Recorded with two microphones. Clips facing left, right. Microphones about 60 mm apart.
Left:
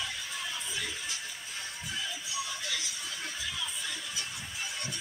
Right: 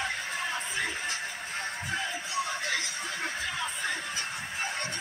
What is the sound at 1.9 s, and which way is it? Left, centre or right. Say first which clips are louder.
Music: right 5 dB; right.